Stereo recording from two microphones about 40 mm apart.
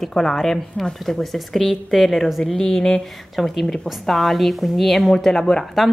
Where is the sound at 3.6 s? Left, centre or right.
Centre.